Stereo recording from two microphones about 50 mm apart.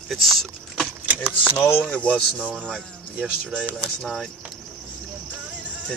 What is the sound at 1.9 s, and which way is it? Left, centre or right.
Speech, left.